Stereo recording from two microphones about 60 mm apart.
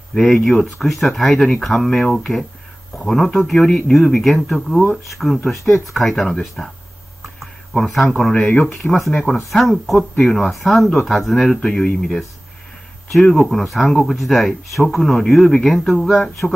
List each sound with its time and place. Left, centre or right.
0.1 s speech: centre
7.7 s speech: centre
8.4 s speech: left
9.3 s speech: centre
13.5 s speech: centre